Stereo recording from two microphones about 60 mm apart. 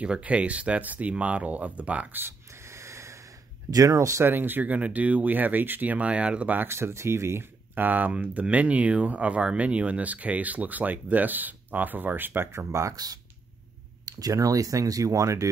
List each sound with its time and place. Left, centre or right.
0.0 s speech: centre
2.1 s a sound: right
3.7 s speech: right
4.2 s speech: right
6.7 s speech: right
7.7 s speech: right
12.9 s speech: right